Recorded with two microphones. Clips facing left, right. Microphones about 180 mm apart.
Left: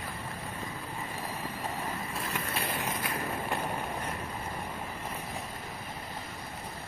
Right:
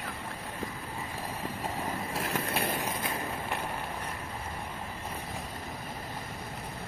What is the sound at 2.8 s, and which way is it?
Vehicle, 25° right (ahead or behind).